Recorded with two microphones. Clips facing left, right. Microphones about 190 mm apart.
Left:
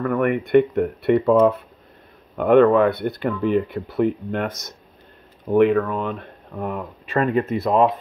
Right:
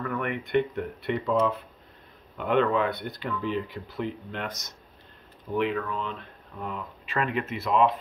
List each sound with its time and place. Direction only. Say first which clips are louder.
0.0 s speech: left 10 dB; 50° left (ahead or behind)
5.5 s speech: left 11 dB; 55° left (ahead or behind); by 7.9 s 40° left (ahead or behind)